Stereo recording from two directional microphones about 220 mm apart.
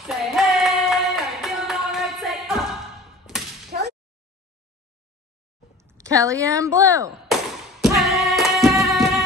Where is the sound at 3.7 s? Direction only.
40° right (ahead or behind).